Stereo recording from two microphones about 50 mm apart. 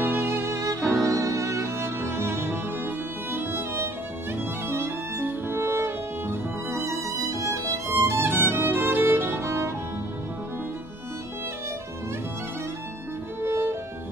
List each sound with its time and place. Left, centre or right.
0.0 s music: right
0.3 s music: right
1.0 s music: right
2.0 s music: right
3.3 s violin: right
5.2 s music: right
6.8 s violin: right
9.4 s music: right
13.4 s music: right